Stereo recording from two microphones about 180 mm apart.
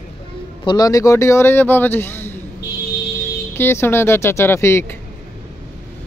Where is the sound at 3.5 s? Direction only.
15° left (ahead or behind).